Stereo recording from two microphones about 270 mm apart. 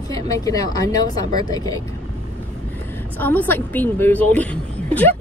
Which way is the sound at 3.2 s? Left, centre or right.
Centre.